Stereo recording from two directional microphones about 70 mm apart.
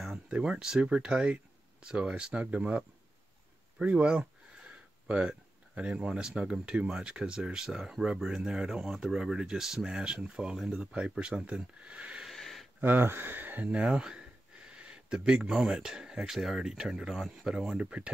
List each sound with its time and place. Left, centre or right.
0.1 s speech: centre
12.3 s a sound: centre
12.8 s speech: right